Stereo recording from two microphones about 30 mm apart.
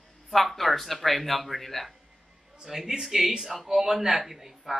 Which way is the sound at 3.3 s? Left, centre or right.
Centre.